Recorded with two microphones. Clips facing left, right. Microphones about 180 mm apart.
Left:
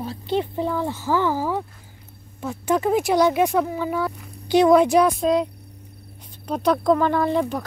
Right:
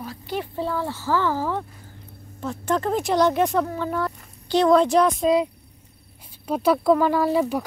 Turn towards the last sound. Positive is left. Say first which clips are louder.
# right 1 dB
turn(degrees=-5)  # may be behind; listen again after turning